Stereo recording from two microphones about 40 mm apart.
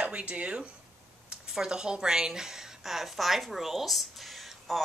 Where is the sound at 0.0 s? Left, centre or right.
Right.